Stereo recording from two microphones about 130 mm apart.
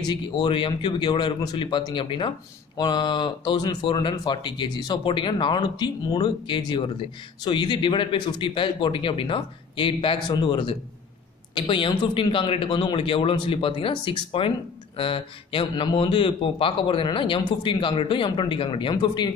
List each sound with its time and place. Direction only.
0.1 s speech: 40° left (ahead or behind)